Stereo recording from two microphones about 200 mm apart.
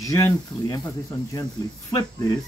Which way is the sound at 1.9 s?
20° left (ahead or behind).